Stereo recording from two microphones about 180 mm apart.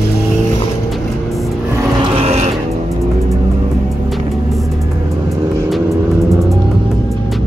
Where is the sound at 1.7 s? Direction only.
15° right (ahead or behind).